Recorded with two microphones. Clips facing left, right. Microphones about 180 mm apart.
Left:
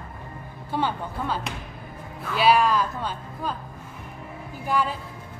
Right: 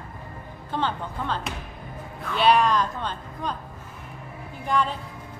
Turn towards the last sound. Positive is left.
turn(degrees=5)  # may be behind; listen again after turning